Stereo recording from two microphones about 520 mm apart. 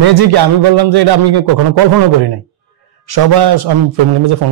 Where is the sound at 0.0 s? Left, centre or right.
Right.